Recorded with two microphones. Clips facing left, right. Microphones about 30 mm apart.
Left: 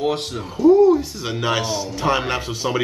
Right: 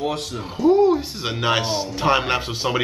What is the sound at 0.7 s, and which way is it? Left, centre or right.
Speech, right.